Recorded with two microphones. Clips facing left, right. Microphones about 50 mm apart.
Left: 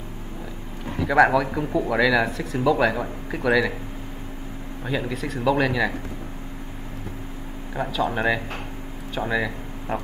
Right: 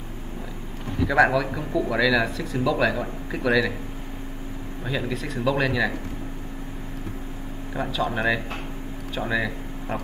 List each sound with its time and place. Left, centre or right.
1.0 s speech: centre
1.6 s speech: left
2.2 s speech: centre
2.6 s speech: centre
4.8 s speech: centre
7.7 s speech: centre